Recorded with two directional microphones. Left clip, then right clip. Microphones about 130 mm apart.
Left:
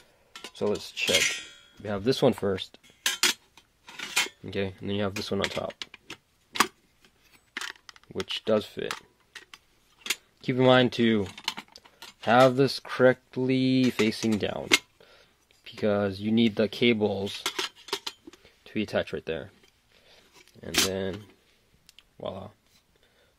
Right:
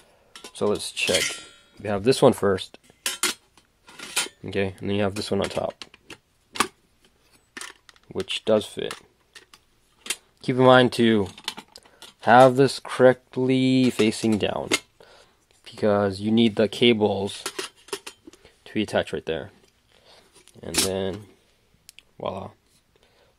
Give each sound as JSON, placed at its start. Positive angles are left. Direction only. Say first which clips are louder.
{"t": 0.6, "sound": "speech", "louder": "right 4 dB", "side_deg": -20}
{"t": 1.1, "sound": "speech", "louder": "even", "side_deg": 0}
{"t": 1.8, "sound": "speech", "louder": "right 6 dB", "side_deg": -20}
{"t": 2.9, "sound": "cutlery", "louder": "left 2 dB", "side_deg": 0}
{"t": 4.4, "sound": "speech", "louder": "right 5 dB", "side_deg": -15}
{"t": 5.4, "sound": "speech", "louder": "right 4 dB", "side_deg": 0}
{"t": 6.5, "sound": "tick-tock", "louder": "even", "side_deg": 0}
{"t": 8.3, "sound": "speech", "louder": "right 5 dB", "side_deg": -5}
{"t": 11.2, "sound": "typing", "louder": "even", "side_deg": 5}
{"t": 12.3, "sound": "speech", "louder": "right 6 dB", "side_deg": -10}
{"t": 15.0, "sound": "a sound", "louder": "right 5 dB", "side_deg": -10}
{"t": 15.8, "sound": "speech", "louder": "right 5 dB", "side_deg": -10}
{"t": 20.5, "sound": "speech", "louder": "right 1 dB", "side_deg": -5}
{"t": 22.1, "sound": "speech", "louder": "right 6 dB", "side_deg": -30}